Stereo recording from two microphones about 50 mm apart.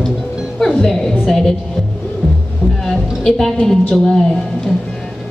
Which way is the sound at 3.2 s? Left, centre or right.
Centre.